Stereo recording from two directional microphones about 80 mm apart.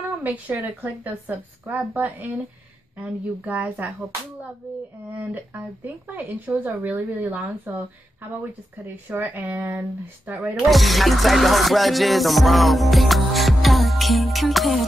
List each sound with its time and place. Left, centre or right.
0.2 s speech: right
5.9 s speech: centre
8.8 s speech: right
10.4 s music: centre